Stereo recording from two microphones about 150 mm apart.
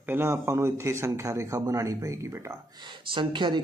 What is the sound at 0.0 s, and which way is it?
Speech, 15° right (ahead or behind).